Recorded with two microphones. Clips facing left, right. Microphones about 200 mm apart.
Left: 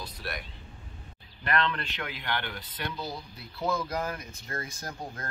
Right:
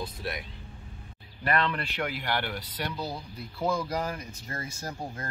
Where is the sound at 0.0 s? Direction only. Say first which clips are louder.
Right 4 dB; 20° right (ahead or behind).